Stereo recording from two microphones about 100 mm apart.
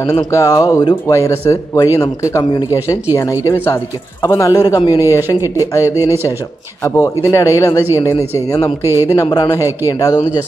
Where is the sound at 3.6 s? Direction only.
30° left (ahead or behind).